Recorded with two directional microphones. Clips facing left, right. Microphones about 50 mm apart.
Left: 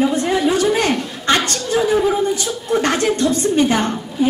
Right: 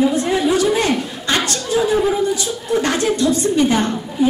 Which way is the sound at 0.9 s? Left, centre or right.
Centre.